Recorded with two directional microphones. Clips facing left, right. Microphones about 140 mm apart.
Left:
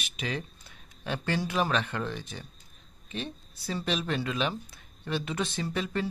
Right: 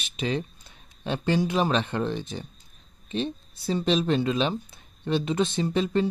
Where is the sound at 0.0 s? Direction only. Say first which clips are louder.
Right 6 dB; 30° right (ahead or behind).